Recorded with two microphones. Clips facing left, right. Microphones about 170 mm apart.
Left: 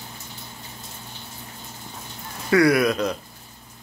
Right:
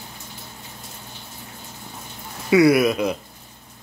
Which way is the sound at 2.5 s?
10° right (ahead or behind).